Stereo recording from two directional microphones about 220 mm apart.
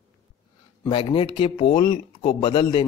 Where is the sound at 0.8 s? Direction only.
25° left (ahead or behind).